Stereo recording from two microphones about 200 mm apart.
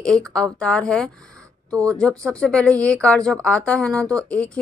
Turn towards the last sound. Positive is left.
turn(degrees=5)  # may be behind; listen again after turning